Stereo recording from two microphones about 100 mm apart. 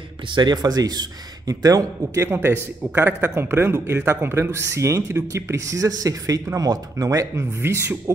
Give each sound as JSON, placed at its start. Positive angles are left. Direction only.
{"t": 0.3, "sound": "speech", "side_deg": -45}
{"t": 2.2, "sound": "a man's voice", "side_deg": -25}